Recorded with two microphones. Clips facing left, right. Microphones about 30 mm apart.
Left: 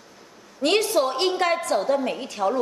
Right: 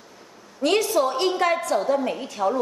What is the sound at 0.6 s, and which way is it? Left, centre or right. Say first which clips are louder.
A woman's voice: even; left.